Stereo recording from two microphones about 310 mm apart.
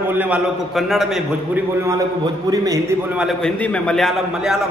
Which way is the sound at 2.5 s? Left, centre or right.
Centre.